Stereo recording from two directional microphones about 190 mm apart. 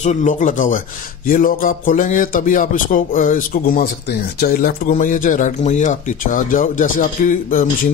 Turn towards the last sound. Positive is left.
turn(degrees=45)  # may be behind; listen again after turning